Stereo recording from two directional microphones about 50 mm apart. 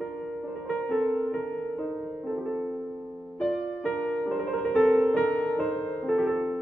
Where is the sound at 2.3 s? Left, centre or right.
Centre.